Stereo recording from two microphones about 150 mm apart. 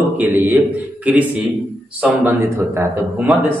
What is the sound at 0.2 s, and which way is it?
Speech, 10° right (ahead or behind).